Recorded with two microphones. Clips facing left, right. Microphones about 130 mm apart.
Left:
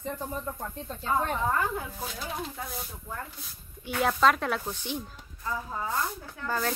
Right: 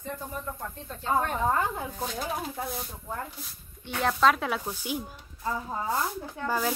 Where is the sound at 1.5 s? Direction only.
25° right (ahead or behind).